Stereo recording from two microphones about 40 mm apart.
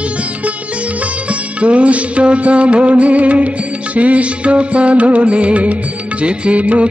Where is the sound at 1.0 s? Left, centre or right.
Right.